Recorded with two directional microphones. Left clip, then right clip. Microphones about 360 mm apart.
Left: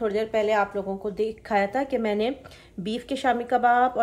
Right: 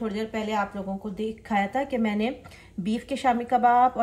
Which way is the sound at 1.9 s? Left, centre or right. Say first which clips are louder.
Left 3 dB; centre.